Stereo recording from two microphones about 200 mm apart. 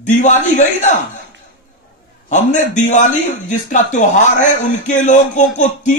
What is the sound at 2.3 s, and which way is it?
Speech, 40° left (ahead or behind).